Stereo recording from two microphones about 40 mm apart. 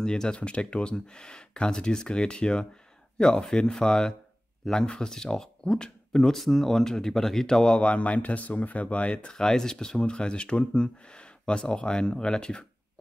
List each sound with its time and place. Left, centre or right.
0.0 s speech: centre
6.3 s speech: centre
7.8 s speech: left
9.3 s speech: centre